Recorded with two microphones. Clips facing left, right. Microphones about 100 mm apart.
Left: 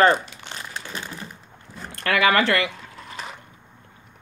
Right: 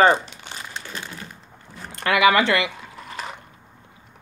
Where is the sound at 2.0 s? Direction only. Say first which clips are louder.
Right 2 dB; 20° right (ahead or behind).